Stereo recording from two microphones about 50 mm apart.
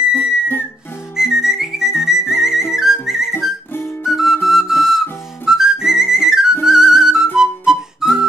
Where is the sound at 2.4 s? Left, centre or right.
Centre.